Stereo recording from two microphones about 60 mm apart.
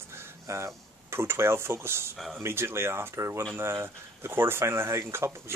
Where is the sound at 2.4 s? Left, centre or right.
Right.